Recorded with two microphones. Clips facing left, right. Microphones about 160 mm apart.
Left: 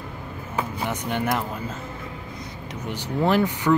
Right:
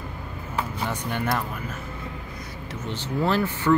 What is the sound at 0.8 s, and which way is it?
Speech, 20° left (ahead or behind).